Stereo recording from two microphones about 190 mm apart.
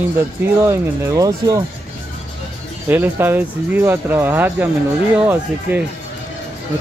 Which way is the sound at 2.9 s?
10° right (ahead or behind).